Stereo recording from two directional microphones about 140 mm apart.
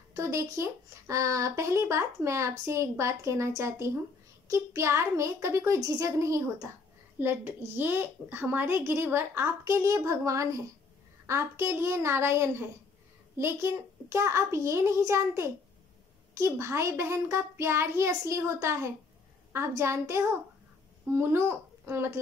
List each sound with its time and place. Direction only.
0.1 s a woman's voice: 20° right (ahead or behind)